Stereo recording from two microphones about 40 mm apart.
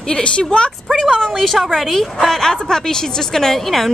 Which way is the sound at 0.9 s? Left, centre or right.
Centre.